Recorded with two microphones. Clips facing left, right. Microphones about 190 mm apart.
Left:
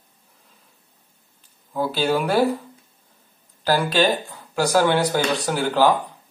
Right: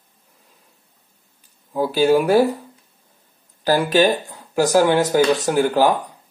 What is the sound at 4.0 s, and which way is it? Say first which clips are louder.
Speech: right 3 dB; 15° right (ahead or behind).